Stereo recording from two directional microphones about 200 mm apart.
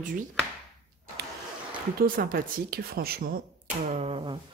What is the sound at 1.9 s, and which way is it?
Speech, 45° right (ahead or behind).